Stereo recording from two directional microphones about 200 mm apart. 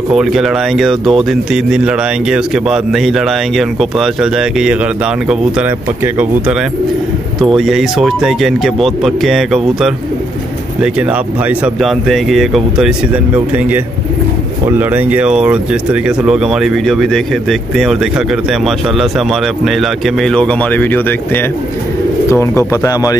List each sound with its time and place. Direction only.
0.1 s speech: centre (ahead or behind)
7.4 s speech: centre (ahead or behind); by 23.1 s 15° left (ahead or behind)